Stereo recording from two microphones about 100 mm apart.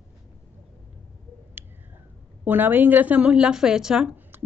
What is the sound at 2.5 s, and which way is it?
A woman's voice, 20° right (ahead or behind).